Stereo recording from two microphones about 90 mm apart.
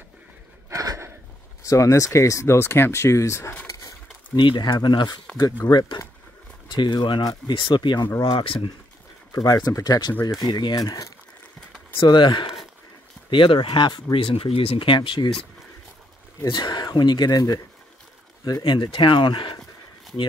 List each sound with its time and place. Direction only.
0.7 s a sound: 35° right (ahead or behind)
1.6 s speech: 35° left (ahead or behind)
4.4 s speech: 60° left (ahead or behind)
7.5 s speech: 65° left (ahead or behind)
9.3 s speech: 45° left (ahead or behind)
12.0 s speech: 60° left (ahead or behind)
14.1 s speech: 85° left
15.0 s speech: 60° left (ahead or behind)
16.4 s speech: 55° left (ahead or behind)
18.6 s speech: 70° left (ahead or behind)